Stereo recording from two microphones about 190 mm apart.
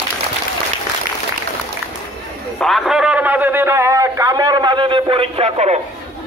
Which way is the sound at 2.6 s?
Centre (ahead or behind).